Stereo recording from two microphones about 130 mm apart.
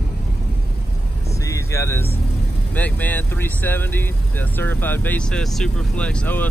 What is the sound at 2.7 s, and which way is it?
Speech, 15° left (ahead or behind).